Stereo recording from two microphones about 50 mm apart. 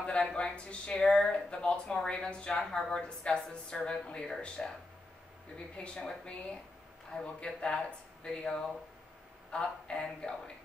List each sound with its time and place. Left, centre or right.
0.0 s a sound: centre
0.4 s a woman's voice: centre
5.8 s a woman's voice: centre
7.3 s a woman's voice: centre